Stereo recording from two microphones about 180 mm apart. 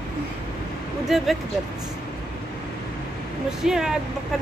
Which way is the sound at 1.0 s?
Centre (ahead or behind).